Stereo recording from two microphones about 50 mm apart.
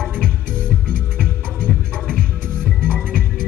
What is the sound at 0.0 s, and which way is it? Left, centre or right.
Music, centre.